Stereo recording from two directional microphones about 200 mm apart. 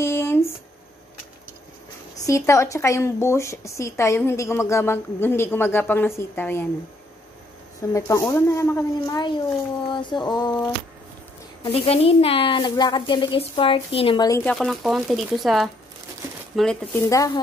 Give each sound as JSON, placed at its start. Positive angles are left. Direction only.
{"t": 0.0, "sound": "a sound", "side_deg": 15}
{"t": 2.2, "sound": "speech", "side_deg": 15}
{"t": 7.9, "sound": "speech", "side_deg": 15}
{"t": 14.4, "sound": "speech", "side_deg": 5}